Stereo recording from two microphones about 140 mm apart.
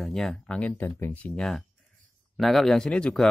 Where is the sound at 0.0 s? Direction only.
Centre (ahead or behind).